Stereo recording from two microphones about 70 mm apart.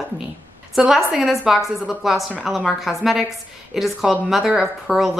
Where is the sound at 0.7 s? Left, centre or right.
Centre.